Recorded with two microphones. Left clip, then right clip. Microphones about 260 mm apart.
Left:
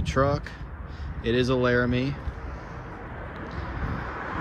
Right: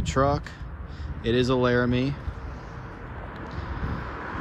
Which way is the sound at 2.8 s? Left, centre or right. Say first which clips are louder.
Left 1 dB; left.